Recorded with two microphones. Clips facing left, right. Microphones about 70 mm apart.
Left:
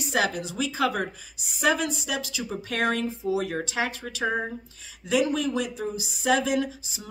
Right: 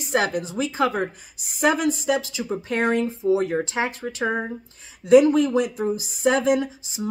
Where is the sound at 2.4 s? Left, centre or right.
Right.